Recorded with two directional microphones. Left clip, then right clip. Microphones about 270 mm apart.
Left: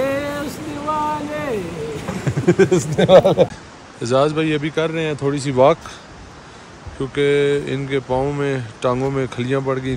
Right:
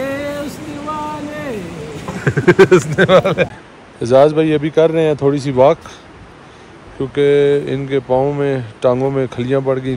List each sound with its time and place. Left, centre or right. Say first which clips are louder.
0.0 s a sound: even; centre
4.0 s speech: right 7 dB; centre
7.0 s speech: right 4 dB; centre